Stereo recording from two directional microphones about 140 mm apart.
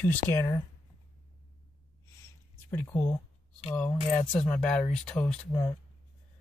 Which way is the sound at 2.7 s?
15° left (ahead or behind).